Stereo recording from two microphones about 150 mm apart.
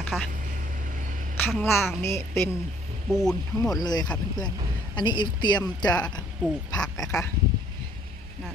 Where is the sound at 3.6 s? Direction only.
25° left (ahead or behind).